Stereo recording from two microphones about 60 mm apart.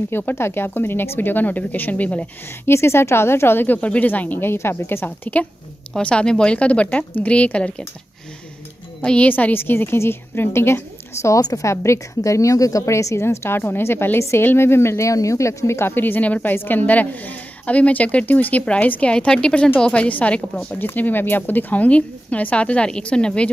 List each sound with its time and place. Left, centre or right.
0.1 s a woman's voice: left
2.6 s a woman's voice: left
4.5 s a woman's voice: left
5.9 s a woman's voice: centre
9.0 s a woman's voice: centre
9.3 s a woman's voice: left
11.2 s a woman's voice: left
15.9 s a woman's voice: left
20.8 s a woman's voice: left; by 23.5 s centre